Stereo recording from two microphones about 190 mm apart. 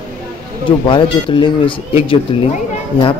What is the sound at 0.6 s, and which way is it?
Speech, 25° left (ahead or behind).